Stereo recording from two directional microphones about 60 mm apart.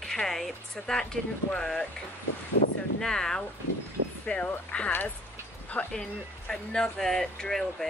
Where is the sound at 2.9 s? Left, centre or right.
Centre.